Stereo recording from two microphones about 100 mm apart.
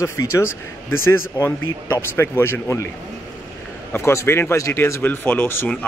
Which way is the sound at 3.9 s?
25° left (ahead or behind).